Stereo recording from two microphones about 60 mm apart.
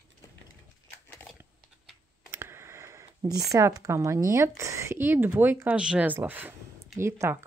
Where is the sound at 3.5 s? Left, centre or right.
Right.